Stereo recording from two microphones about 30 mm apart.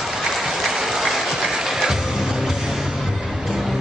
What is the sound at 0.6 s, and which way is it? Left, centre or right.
Applause, centre.